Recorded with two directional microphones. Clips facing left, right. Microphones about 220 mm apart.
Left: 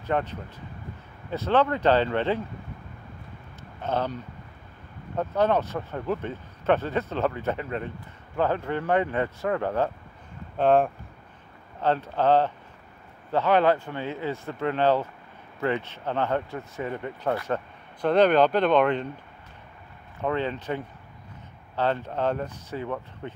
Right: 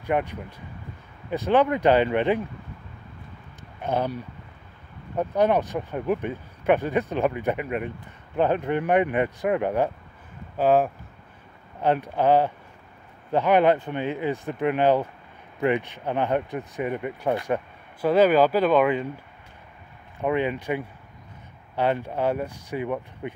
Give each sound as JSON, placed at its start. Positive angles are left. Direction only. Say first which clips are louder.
{"t": 0.0, "sound": "speech", "louder": "right 2 dB", "side_deg": -15}
{"t": 3.8, "sound": "speech", "louder": "right 2 dB", "side_deg": -10}
{"t": 10.6, "sound": "speech", "louder": "right 1 dB", "side_deg": -5}
{"t": 20.2, "sound": "speech", "louder": "right 3 dB", "side_deg": -15}